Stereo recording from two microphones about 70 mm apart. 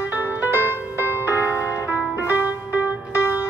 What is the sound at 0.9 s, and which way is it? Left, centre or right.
Music, right.